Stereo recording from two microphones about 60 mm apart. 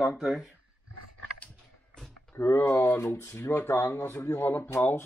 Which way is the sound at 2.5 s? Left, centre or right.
Left.